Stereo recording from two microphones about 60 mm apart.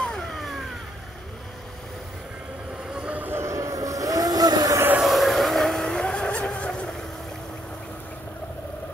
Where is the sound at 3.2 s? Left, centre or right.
Right.